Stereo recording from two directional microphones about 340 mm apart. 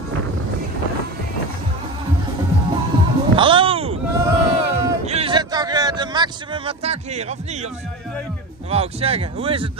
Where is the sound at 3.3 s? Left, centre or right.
Centre.